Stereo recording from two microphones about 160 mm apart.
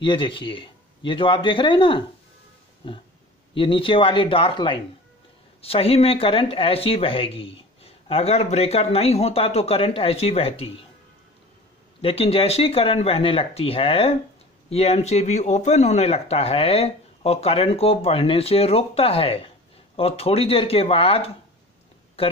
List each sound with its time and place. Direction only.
0.0 s speech: 30° left (ahead or behind)
3.5 s speech: 35° left (ahead or behind)
12.0 s speech: 35° left (ahead or behind)